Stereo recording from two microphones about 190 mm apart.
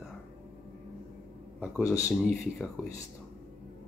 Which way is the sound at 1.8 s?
15° left (ahead or behind).